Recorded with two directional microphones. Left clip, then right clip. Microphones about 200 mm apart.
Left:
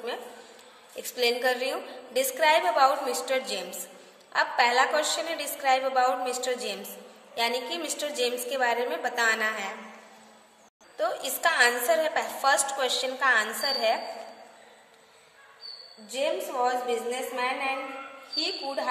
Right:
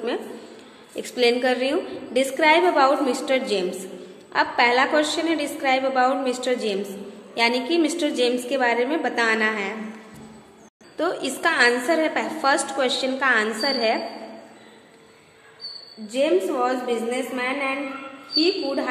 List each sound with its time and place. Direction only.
0.9 s a woman's voice: 10° left (ahead or behind)
11.0 s a woman's voice: 5° left (ahead or behind)
16.1 s a woman's voice: 15° left (ahead or behind)